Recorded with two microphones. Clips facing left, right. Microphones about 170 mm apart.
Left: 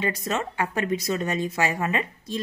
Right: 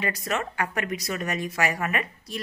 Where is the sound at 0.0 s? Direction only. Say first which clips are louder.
Left 2 dB; 25° left (ahead or behind).